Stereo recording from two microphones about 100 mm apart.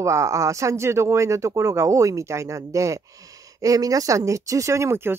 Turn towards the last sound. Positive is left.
turn(degrees=-25)  # may be behind; listen again after turning